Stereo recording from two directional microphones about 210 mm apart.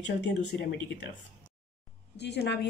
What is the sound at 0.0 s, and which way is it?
Speech, 55° left (ahead or behind).